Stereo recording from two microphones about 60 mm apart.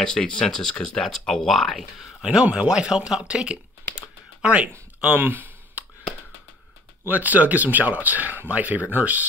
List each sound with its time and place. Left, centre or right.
0.0 s speech: centre
2.2 s speech: centre
5.1 s speech: right
7.1 s speech: right